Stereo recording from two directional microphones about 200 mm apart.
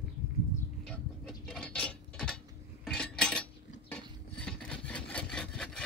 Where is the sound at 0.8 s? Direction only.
5° left (ahead or behind).